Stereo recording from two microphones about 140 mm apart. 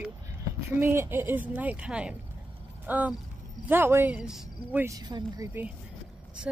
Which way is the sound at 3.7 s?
15° right (ahead or behind).